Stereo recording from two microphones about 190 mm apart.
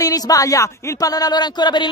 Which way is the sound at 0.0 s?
20° left (ahead or behind).